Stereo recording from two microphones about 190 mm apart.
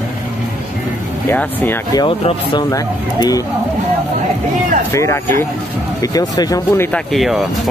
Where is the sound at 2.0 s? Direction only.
30° left (ahead or behind).